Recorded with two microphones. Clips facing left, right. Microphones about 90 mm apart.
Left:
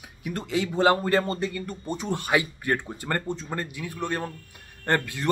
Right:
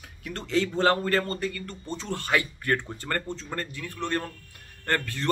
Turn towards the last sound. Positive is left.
turn(degrees=15)  # may be behind; listen again after turning